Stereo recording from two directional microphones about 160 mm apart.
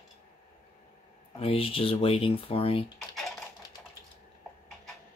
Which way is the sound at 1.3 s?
35° left (ahead or behind).